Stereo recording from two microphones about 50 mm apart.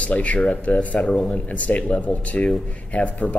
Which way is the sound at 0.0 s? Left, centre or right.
Left.